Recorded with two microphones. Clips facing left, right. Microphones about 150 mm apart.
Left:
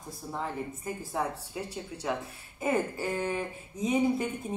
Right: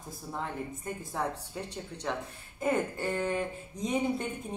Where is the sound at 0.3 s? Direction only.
5° left (ahead or behind).